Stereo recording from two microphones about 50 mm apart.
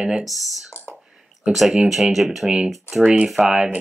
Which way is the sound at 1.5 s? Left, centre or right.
Centre.